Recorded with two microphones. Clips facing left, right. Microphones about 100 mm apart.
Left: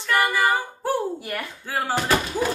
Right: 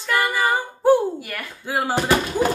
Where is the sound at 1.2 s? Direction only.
20° left (ahead or behind).